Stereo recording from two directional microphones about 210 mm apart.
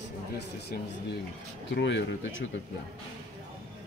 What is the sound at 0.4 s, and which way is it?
Speech, 50° left (ahead or behind).